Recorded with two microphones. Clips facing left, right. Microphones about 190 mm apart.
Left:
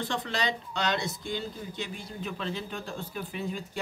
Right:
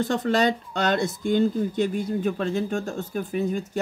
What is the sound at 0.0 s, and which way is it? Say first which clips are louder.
Speech: right 10 dB; 45° right (ahead or behind).